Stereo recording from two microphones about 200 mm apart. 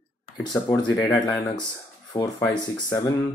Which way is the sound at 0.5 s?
15° left (ahead or behind).